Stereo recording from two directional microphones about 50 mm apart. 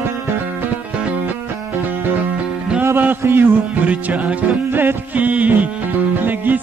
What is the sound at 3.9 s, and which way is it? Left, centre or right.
Music, right.